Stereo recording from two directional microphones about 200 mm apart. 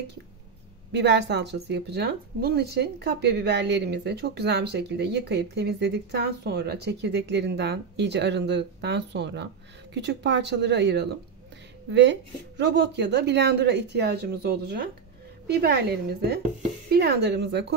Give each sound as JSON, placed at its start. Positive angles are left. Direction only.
{"t": 0.9, "sound": "a woman's voice", "side_deg": -60}